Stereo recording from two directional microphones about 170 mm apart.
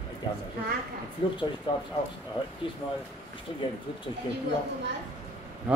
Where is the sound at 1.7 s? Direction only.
30° left (ahead or behind).